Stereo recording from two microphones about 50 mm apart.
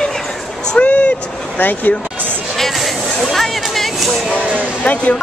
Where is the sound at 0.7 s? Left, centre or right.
Left.